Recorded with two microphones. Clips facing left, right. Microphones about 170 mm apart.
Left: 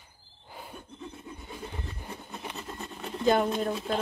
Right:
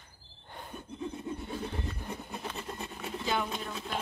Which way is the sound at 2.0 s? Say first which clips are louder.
Right 1 dB; 10° left (ahead or behind).